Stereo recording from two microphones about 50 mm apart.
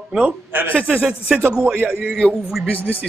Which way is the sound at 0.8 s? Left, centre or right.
Right.